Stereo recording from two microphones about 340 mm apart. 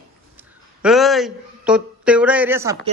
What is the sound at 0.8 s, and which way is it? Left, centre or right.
A man's voice, centre.